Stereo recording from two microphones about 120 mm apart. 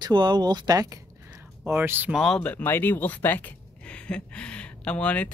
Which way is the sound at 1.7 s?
15° right (ahead or behind).